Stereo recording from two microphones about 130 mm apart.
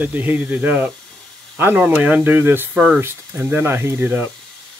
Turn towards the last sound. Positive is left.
turn(degrees=-15)  # may be behind; listen again after turning